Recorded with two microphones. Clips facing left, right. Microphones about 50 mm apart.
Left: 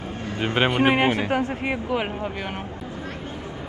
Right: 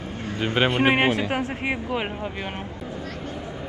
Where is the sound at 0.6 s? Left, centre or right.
Centre.